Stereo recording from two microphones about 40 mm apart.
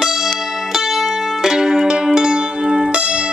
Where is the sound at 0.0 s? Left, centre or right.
Centre.